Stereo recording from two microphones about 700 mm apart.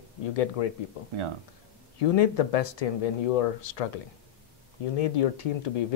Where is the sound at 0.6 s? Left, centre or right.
Left.